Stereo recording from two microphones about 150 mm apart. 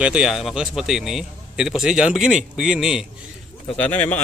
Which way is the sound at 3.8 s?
10° left (ahead or behind).